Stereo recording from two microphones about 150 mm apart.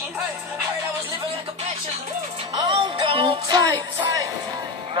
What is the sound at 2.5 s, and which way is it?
Music, 35° right (ahead or behind).